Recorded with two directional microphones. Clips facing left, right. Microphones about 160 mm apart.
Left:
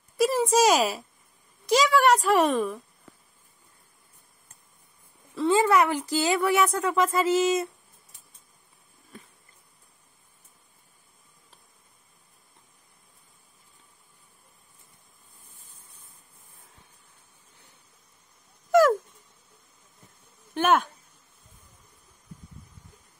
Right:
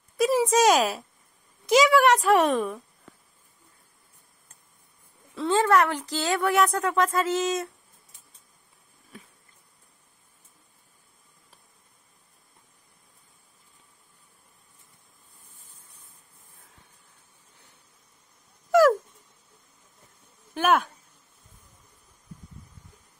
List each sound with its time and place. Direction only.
0.3 s speech: centre (ahead or behind)
5.3 s speech: 5° left (ahead or behind)
18.7 s a sound: centre (ahead or behind)
20.5 s speech: centre (ahead or behind)